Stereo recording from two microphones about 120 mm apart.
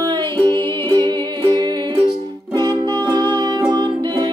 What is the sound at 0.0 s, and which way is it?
Music, 40° right (ahead or behind).